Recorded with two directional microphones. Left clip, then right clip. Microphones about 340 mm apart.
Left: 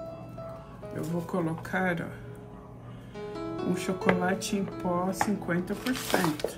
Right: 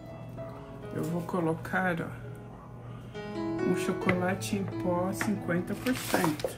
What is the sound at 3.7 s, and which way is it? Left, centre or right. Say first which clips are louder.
Speech: left 2 dB; centre.